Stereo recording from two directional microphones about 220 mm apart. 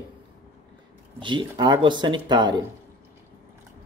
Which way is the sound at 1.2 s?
20° right (ahead or behind).